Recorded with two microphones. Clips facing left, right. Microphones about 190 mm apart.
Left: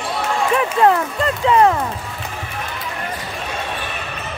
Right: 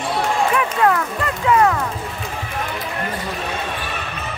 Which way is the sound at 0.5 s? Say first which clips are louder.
Left 6 dB; 25° left (ahead or behind).